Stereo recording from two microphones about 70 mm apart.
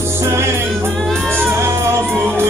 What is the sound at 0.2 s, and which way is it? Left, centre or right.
Music, right.